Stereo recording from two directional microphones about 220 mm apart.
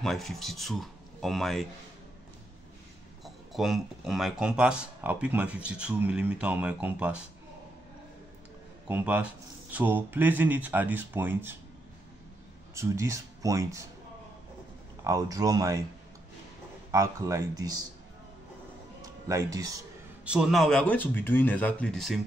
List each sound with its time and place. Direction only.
0.0 s speech: centre (ahead or behind)
3.5 s speech: centre (ahead or behind)
8.8 s speech: 10° right (ahead or behind)
12.7 s speech: 15° right (ahead or behind)
15.0 s speech: 15° right (ahead or behind)
16.9 s speech: 15° right (ahead or behind)
18.9 s music: 15° right (ahead or behind)
20.2 s speech: centre (ahead or behind)